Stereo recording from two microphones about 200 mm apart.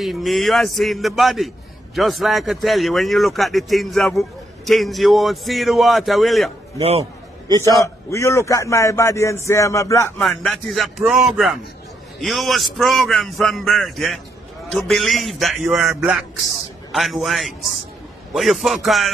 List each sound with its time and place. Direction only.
0.0 s a man's voice: centre (ahead or behind)
6.8 s a man's voice: 30° right (ahead or behind)
7.8 s a man's voice: 15° left (ahead or behind)
10.1 s a man's voice: centre (ahead or behind)